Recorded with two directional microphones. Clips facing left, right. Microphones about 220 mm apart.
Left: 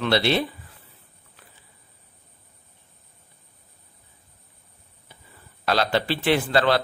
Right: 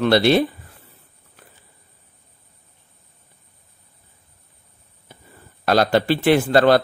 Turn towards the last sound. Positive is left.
turn(degrees=-45)  # may be behind; listen again after turning